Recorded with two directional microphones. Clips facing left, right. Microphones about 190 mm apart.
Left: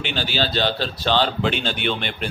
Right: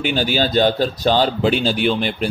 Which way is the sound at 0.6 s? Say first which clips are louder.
Right 7 dB; 45° right (ahead or behind).